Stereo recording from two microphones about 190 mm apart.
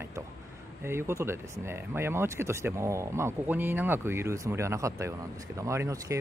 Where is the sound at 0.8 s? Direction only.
15° right (ahead or behind).